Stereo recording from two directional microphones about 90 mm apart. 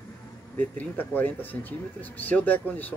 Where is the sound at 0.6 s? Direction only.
20° left (ahead or behind).